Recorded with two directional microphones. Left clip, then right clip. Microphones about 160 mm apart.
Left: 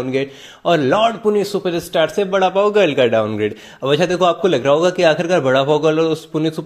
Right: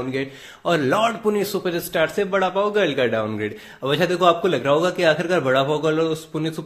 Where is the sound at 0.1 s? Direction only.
35° left (ahead or behind).